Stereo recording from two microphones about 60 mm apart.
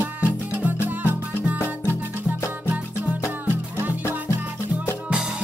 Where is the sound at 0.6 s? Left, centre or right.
Right.